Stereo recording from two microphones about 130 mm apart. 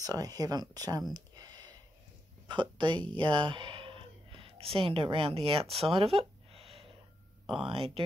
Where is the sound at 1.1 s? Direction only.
30° right (ahead or behind).